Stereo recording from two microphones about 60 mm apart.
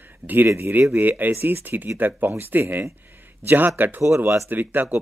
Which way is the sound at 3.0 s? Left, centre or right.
Right.